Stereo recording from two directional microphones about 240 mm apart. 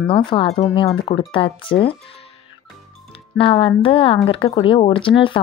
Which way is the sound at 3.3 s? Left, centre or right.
Left.